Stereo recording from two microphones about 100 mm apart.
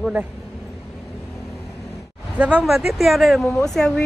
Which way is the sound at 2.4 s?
10° right (ahead or behind).